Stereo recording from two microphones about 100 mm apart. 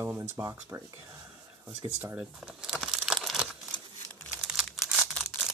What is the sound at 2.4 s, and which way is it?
Speech, 5° right (ahead or behind).